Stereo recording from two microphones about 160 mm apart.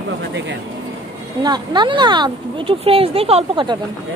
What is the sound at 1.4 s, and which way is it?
Speech, 25° right (ahead or behind).